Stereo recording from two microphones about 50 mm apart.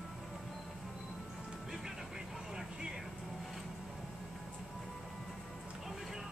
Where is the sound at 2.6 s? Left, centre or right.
Centre.